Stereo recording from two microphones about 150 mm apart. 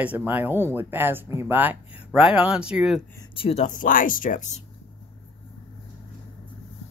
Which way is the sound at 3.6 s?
65° left (ahead or behind).